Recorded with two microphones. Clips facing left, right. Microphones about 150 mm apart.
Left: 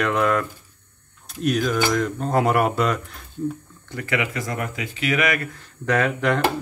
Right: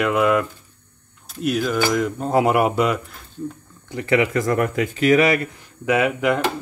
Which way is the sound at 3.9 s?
30° right (ahead or behind).